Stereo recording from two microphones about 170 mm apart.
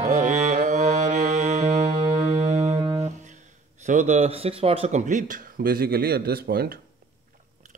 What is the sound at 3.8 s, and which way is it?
Speech, 45° right (ahead or behind).